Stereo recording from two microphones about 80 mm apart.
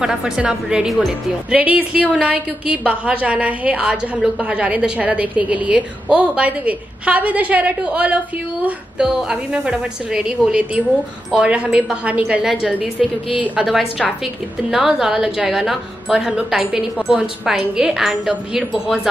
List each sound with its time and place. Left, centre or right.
0.0 s a woman's voice: centre
1.5 s a woman's voice: centre
12.4 s a woman's voice: centre